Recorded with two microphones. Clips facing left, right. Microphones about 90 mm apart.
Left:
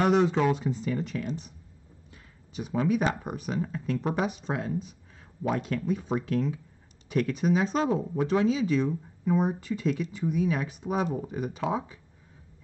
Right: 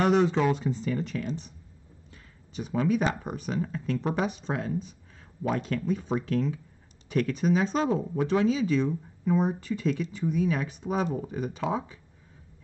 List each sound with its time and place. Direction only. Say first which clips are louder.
0.0 s speech: even; 5° left (ahead or behind)